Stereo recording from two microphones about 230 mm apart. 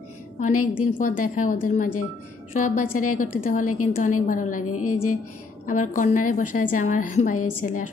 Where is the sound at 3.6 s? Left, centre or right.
Left.